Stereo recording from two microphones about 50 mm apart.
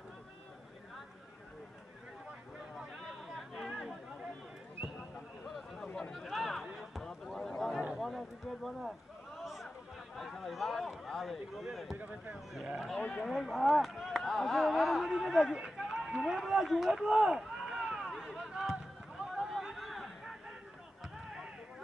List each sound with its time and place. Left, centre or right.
3.5 s chatter: centre
6.1 s run: centre
6.8 s a sound: centre
10.1 s speech: centre
12.0 s speech: right
13.2 s speech: centre
15.8 s run: centre